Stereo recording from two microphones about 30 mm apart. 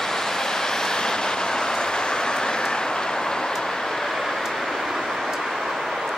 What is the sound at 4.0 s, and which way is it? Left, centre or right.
Vehicle, centre.